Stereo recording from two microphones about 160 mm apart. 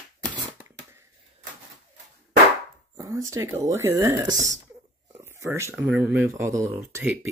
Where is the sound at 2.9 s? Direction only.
20° right (ahead or behind).